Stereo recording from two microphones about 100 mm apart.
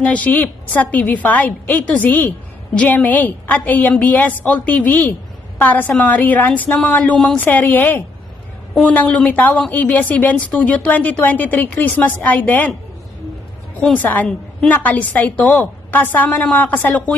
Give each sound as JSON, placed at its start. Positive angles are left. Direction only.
{"t": 0.0, "sound": "a woman's voice", "side_deg": 15}
{"t": 13.7, "sound": "a woman's voice", "side_deg": 10}